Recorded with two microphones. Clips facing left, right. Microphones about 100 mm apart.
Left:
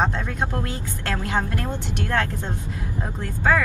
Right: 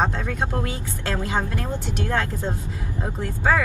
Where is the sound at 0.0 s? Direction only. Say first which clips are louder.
Even; 15° right (ahead or behind).